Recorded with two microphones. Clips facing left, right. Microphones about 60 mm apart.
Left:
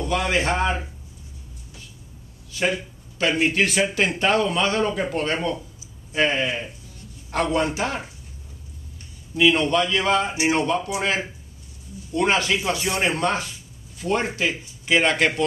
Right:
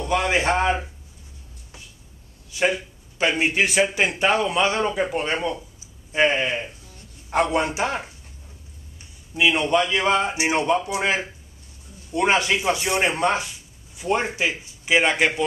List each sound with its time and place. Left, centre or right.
0.3 s a man's voice: right
2.5 s a man's voice: centre
9.3 s a man's voice: centre
12.1 s speech: right